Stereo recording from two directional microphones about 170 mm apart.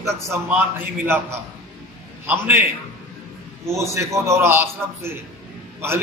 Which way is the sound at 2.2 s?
10° right (ahead or behind).